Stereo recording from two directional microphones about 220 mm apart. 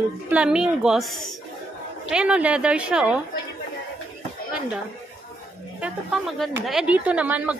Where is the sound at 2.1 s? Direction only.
5° right (ahead or behind).